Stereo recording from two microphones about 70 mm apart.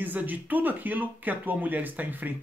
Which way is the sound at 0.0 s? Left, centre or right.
Right.